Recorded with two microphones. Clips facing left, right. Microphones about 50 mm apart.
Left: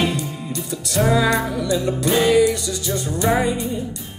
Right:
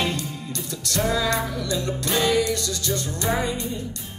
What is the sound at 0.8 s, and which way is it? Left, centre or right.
Music, centre.